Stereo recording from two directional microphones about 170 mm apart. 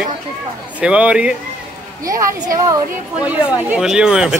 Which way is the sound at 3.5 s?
5° right (ahead or behind).